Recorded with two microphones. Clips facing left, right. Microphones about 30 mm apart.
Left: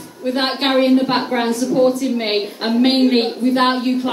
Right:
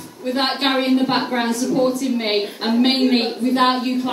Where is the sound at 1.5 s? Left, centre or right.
Left.